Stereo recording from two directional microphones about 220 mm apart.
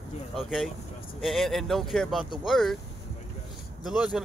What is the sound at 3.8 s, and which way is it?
Speech, centre (ahead or behind).